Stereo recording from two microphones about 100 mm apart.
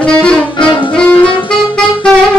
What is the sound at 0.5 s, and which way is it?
Music, 55° left (ahead or behind).